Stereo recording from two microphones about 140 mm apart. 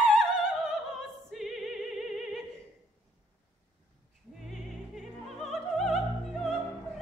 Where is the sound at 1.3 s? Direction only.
Centre (ahead or behind).